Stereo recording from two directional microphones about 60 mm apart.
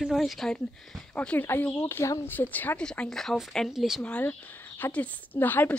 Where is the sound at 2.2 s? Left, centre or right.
Left.